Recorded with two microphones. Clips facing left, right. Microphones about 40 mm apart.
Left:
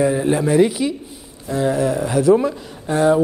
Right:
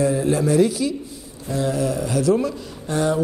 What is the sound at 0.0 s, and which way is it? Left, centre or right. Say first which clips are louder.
Speech: left 2 dB; left.